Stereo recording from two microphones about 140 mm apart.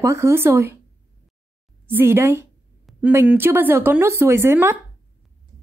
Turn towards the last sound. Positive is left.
turn(degrees=-20)  # may be behind; listen again after turning